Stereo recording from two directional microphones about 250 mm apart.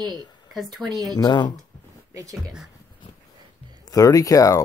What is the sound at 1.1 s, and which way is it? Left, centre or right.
Speech, centre.